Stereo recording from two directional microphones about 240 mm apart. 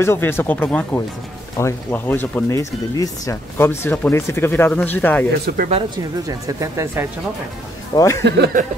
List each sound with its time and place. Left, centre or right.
0.0 s speech: centre
5.6 s speech: right
6.2 s speech: centre
7.9 s speech: centre
8.2 s speech: right